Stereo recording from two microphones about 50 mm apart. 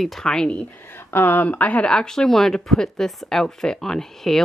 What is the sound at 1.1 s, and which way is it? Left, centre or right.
Speech, left.